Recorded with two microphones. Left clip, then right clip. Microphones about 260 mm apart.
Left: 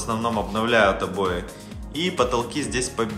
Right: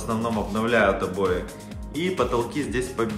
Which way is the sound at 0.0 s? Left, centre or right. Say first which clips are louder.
Left 2 dB; centre.